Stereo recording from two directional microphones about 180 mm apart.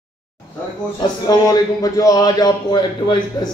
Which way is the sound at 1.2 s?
20° left (ahead or behind).